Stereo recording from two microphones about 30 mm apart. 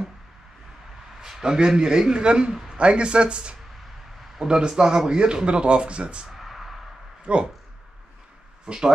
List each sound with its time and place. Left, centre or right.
1.4 s speech: right
6.3 s a sound: centre
7.3 s speech: right
8.6 s speech: right